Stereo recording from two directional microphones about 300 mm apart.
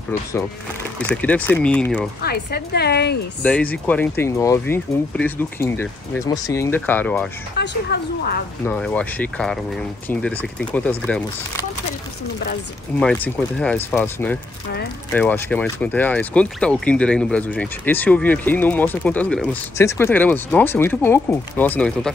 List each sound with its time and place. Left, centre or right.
0.9 s speech: centre
2.2 s speech: left
3.4 s speech: centre
7.5 s speech: left
8.6 s speech: centre
13.0 s speech: centre